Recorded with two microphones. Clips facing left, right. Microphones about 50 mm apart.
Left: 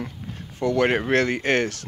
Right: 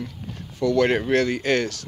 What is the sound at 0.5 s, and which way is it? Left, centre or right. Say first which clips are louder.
Speech: right 1 dB; left.